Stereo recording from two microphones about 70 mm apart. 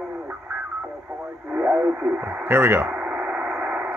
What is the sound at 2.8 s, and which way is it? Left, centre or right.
Radio, right.